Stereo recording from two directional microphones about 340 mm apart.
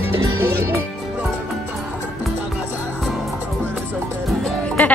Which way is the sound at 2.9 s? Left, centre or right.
Centre.